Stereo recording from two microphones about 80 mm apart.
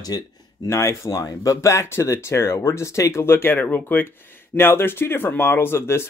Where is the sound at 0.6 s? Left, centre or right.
Left.